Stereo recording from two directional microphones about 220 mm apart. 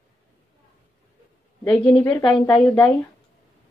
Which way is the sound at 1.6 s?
5° left (ahead or behind).